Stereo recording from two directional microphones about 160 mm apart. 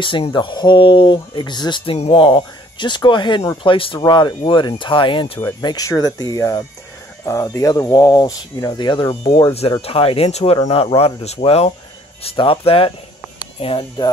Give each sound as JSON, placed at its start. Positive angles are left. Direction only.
{"t": 0.0, "sound": "speech", "side_deg": 30}
{"t": 9.1, "sound": "speech", "side_deg": 40}